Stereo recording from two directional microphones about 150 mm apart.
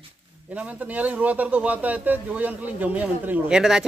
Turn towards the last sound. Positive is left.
turn(degrees=-5)  # may be behind; listen again after turning